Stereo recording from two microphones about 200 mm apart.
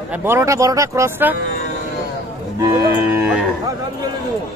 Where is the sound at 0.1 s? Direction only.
10° right (ahead or behind).